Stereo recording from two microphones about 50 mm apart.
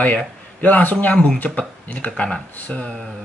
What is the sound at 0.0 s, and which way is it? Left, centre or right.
A man's voice, left.